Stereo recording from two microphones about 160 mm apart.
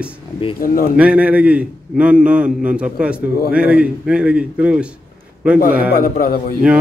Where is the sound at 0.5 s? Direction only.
60° left (ahead or behind).